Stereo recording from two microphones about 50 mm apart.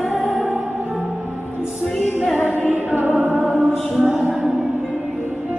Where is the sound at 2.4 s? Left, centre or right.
Right.